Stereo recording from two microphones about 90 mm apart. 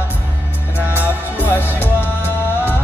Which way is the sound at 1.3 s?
20° left (ahead or behind).